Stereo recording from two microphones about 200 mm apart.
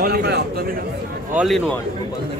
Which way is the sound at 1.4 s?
Centre (ahead or behind).